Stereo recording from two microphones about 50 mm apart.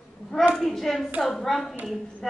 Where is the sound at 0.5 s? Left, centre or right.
Centre.